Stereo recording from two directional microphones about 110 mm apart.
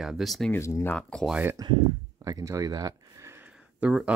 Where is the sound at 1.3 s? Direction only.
20° right (ahead or behind).